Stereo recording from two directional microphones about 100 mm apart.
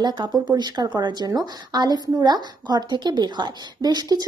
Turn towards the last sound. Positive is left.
turn(degrees=-40)  # may be behind; listen again after turning